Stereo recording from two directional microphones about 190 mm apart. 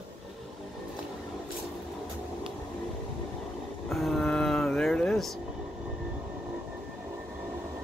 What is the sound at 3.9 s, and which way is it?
Music, centre (ahead or behind).